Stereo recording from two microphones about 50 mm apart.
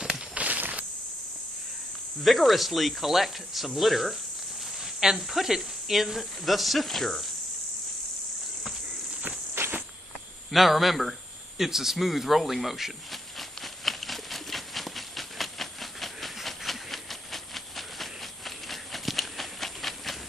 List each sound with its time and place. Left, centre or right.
0.3 s walk: right
2.2 s speech: centre
9.6 s insect: right
10.5 s a sound: centre